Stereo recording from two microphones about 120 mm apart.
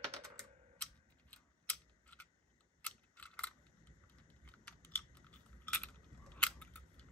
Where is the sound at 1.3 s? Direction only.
10° left (ahead or behind).